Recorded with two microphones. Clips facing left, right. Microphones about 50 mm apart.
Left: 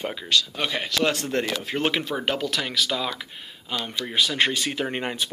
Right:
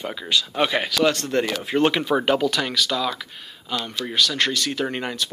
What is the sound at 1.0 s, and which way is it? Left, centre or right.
Speech, centre.